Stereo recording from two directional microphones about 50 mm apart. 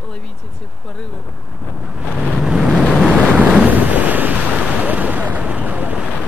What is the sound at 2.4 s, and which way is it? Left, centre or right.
Vehicle, centre.